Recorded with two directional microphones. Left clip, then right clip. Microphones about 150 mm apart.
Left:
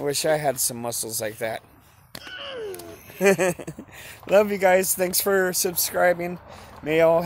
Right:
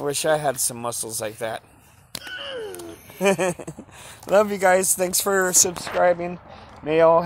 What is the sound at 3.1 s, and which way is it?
Speech, 20° left (ahead or behind).